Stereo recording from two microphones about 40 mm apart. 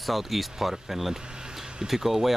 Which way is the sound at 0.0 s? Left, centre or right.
Centre.